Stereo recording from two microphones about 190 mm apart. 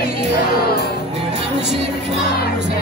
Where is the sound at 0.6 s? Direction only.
55° left (ahead or behind).